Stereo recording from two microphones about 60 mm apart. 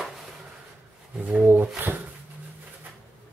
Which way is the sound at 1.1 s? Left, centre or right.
Centre.